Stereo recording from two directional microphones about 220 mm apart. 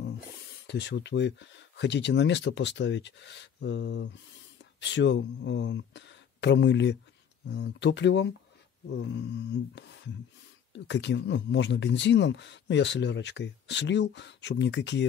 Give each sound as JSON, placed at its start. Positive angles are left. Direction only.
{"t": 0.7, "sound": "speech", "side_deg": 50}